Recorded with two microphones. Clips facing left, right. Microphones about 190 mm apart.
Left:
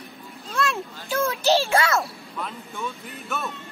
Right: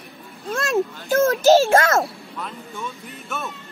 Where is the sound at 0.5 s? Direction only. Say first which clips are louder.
Right 5 dB; 45° right (ahead or behind).